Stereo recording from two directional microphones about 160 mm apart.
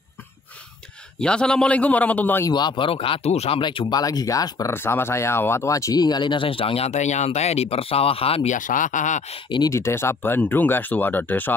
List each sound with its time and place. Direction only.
1.2 s speech: 5° left (ahead or behind)
2.5 s speech: 30° left (ahead or behind)
8.5 s speech: 55° left (ahead or behind)
9.5 s speech: 20° left (ahead or behind)